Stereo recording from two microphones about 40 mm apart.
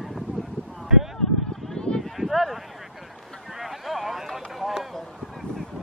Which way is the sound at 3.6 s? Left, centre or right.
Centre.